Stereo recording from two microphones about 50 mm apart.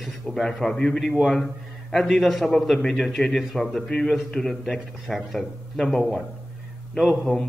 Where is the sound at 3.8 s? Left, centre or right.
Centre.